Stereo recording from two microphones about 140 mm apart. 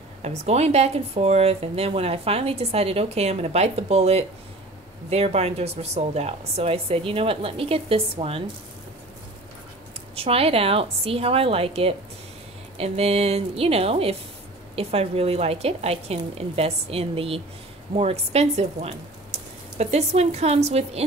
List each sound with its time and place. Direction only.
0.2 s speech: 50° right (ahead or behind)
10.1 s speech: 45° right (ahead or behind)